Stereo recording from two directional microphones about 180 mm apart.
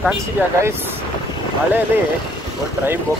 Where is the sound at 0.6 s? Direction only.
15° right (ahead or behind).